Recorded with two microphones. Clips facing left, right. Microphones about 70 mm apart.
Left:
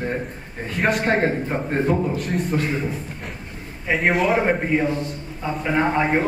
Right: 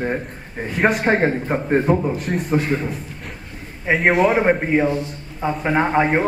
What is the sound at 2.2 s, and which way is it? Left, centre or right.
Speech, centre.